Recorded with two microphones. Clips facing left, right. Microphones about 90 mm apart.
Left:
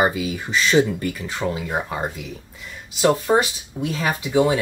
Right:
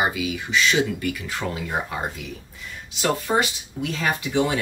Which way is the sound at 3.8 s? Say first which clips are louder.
Left 1 dB; 10° left (ahead or behind).